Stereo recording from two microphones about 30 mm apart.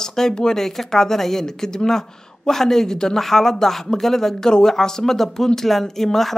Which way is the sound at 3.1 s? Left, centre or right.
Centre.